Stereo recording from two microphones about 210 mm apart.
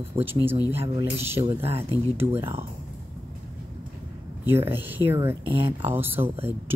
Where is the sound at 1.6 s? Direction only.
30° right (ahead or behind).